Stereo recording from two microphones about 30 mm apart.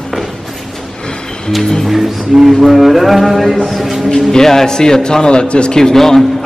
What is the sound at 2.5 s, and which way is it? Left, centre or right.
Music, centre.